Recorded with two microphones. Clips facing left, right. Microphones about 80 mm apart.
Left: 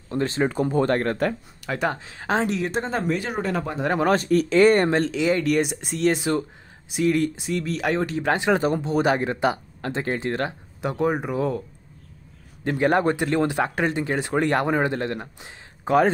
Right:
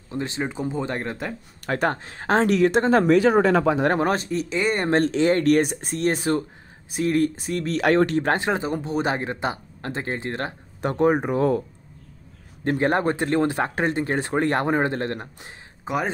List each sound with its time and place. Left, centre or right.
0.4 s speech: centre
0.7 s speech: centre
1.7 s speech: right
2.4 s speech: right
4.0 s speech: right
4.9 s speech: right
5.9 s speech: right
7.7 s speech: right
8.2 s speech: right
10.8 s speech: right
12.6 s speech: right
15.4 s a sound: centre